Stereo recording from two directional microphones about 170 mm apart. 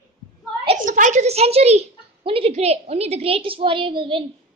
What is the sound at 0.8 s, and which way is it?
A woman's voice, 50° right (ahead or behind).